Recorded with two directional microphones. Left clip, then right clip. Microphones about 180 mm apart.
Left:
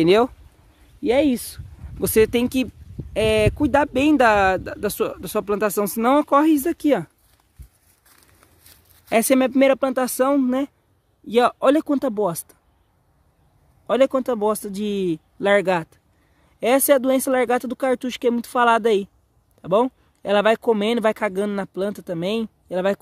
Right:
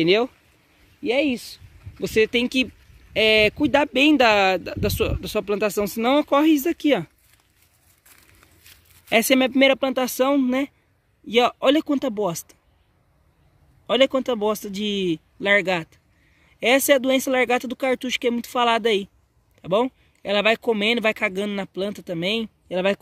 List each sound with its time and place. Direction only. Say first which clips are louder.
0.0 s speech: left 3 dB; 25° left (ahead or behind)
1.0 s speech: left 3 dB; 35° left (ahead or behind)
2.4 s speech: right 1 dB; 15° left (ahead or behind)
9.1 s speech: left 1 dB; 10° left (ahead or behind)
13.8 s speech: left 1 dB; 5° left (ahead or behind)
15.3 s speech: left 2 dB; 20° left (ahead or behind); by 22.9 s 5° left (ahead or behind)